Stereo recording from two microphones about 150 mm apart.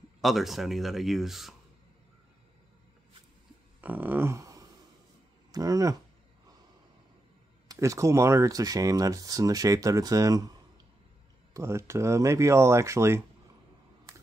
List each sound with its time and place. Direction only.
0.2 s speech: centre (ahead or behind)
3.8 s a sound: 10° right (ahead or behind)
5.5 s speech: 25° right (ahead or behind)
7.6 s speech: 20° right (ahead or behind)
11.5 s speech: 20° right (ahead or behind)